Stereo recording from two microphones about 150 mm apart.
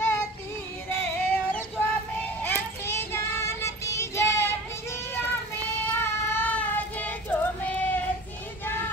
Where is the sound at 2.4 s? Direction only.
15° left (ahead or behind).